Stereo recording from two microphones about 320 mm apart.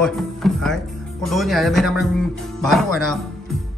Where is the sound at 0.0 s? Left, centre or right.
Centre.